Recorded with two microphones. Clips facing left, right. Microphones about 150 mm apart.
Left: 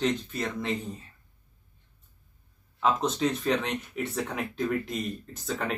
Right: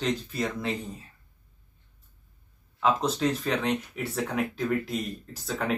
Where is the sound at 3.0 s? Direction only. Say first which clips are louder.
Even; centre (ahead or behind).